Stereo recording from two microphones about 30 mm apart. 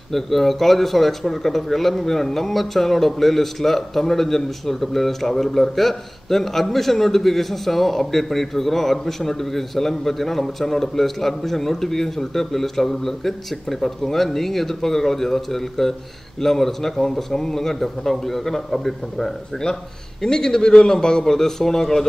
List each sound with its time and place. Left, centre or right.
0.1 s speech: centre
19.6 s a man's voice: centre